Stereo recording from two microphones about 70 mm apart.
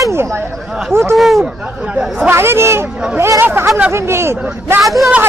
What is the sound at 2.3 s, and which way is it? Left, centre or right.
Speech, right.